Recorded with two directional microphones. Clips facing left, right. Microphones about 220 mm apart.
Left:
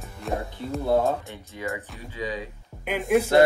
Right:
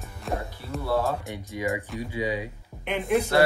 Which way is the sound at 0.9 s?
15° left (ahead or behind).